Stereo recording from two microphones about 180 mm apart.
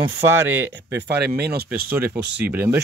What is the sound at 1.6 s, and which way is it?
Speech, 10° right (ahead or behind).